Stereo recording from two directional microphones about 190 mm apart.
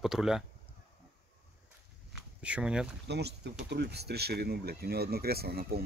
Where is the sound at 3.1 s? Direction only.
60° right (ahead or behind).